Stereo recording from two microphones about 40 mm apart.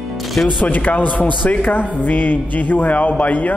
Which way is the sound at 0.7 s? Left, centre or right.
Left.